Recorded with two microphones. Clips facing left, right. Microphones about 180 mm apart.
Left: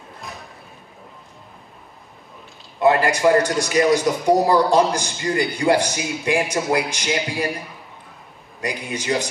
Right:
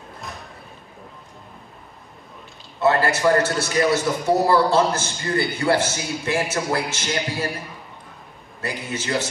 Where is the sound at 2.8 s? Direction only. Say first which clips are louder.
Left 2 dB; 15° left (ahead or behind).